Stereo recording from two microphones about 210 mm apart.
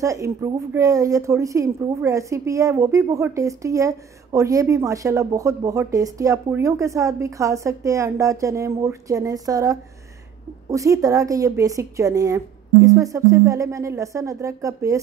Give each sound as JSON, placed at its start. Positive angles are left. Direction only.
{"t": 0.0, "sound": "a woman's voice", "side_deg": -15}